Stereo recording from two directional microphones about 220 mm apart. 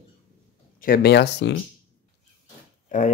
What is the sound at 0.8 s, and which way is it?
Speech, 40° left (ahead or behind).